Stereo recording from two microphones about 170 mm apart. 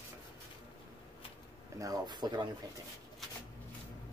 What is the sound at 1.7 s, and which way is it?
Speech, 20° right (ahead or behind).